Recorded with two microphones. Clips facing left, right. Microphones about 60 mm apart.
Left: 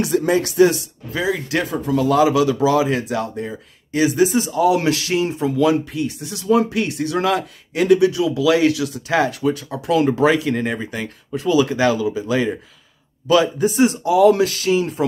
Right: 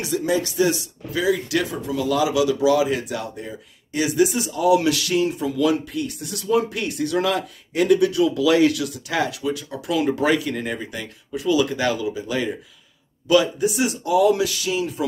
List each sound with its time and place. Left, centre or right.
0.0 s speech: left
1.2 s speech: left
13.3 s speech: left
14.0 s speech: left
14.3 s speech: left